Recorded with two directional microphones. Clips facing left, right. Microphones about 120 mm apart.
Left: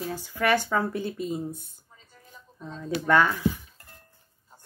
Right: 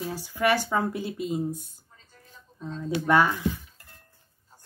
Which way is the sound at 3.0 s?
15° right (ahead or behind).